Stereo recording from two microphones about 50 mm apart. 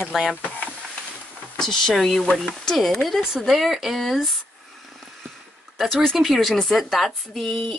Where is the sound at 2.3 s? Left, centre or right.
Centre.